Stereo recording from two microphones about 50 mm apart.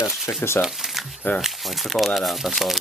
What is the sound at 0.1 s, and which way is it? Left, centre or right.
Speech, centre.